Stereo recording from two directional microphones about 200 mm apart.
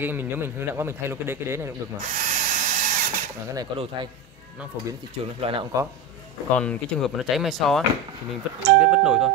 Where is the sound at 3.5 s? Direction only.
20° right (ahead or behind).